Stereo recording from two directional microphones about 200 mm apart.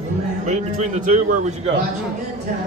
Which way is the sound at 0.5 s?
35° right (ahead or behind).